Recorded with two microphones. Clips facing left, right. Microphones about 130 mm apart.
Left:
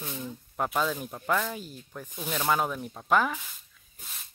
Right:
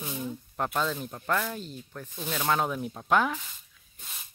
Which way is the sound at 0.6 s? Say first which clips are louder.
Left 1 dB; 5° left (ahead or behind).